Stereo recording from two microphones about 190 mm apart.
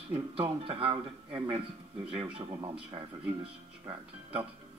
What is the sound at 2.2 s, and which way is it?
Speech, 30° right (ahead or behind).